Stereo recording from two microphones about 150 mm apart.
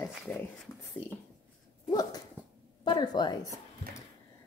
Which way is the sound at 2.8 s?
30° left (ahead or behind).